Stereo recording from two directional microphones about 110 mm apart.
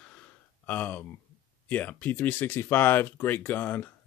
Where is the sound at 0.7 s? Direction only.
15° left (ahead or behind).